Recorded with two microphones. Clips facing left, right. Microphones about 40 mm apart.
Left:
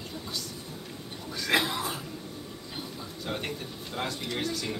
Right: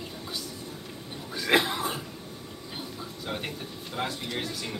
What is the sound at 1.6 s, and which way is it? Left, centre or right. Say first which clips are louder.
Speech: right 2 dB; right.